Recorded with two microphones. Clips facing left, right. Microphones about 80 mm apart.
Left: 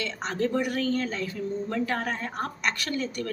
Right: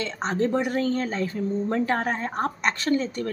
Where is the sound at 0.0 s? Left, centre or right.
Right.